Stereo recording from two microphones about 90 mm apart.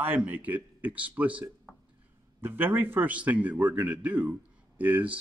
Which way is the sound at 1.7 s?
Centre (ahead or behind).